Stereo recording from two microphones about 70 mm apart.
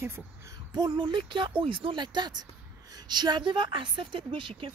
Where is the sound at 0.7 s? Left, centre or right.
Right.